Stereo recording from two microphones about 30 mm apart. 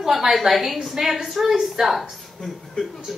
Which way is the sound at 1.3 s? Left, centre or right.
Centre.